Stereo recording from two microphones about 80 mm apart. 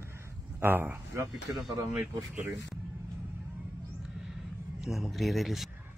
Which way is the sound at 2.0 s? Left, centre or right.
Centre.